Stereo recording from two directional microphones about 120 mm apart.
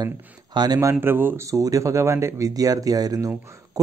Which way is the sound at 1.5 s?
30° right (ahead or behind).